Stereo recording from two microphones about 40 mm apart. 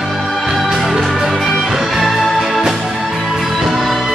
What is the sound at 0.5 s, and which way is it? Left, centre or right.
Music, centre.